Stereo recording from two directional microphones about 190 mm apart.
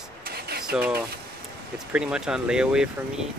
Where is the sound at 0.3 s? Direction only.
55° right (ahead or behind).